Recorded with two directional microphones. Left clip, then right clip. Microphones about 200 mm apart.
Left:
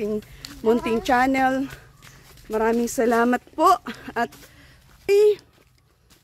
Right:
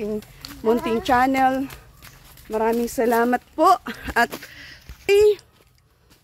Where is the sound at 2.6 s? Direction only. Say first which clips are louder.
Even; 15° left (ahead or behind).